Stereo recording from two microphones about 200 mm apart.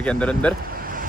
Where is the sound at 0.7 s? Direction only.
45° right (ahead or behind).